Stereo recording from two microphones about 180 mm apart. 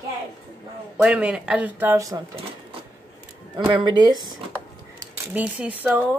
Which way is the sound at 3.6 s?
25° right (ahead or behind).